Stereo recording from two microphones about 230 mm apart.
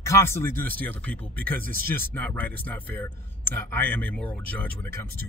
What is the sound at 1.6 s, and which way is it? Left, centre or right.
Speech, right.